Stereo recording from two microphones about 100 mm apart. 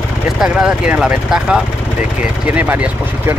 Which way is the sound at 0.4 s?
5° right (ahead or behind).